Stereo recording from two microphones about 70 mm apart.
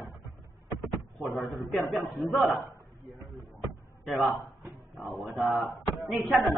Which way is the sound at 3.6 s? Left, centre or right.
Centre.